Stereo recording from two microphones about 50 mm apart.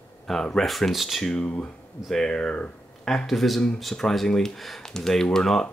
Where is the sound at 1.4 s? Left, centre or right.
Left.